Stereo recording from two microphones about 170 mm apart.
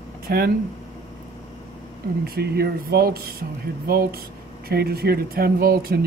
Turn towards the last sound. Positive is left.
turn(degrees=-60)  # may be behind; listen again after turning